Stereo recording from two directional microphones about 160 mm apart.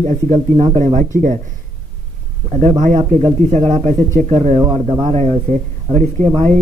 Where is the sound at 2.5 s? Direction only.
45° right (ahead or behind).